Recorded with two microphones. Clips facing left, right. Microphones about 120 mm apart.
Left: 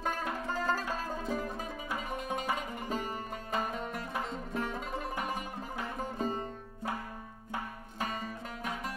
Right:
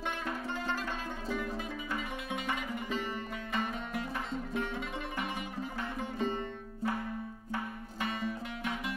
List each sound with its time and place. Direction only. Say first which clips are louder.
0.0 s music: left 2 dB; 40° left (ahead or behind)
8.0 s music: right 2 dB; 40° left (ahead or behind)